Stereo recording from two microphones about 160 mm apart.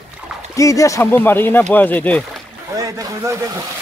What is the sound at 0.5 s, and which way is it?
Speech, 20° left (ahead or behind).